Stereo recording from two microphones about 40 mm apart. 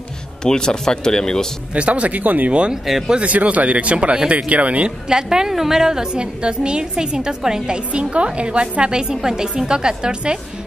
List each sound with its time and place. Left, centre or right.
0.4 s speech: centre
1.7 s speech: right
5.0 s a woman's voice: centre